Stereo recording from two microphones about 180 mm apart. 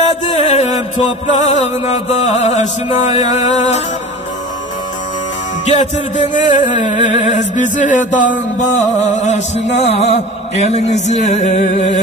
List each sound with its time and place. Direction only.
0.0 s music: 40° left (ahead or behind)
5.7 s music: 40° left (ahead or behind)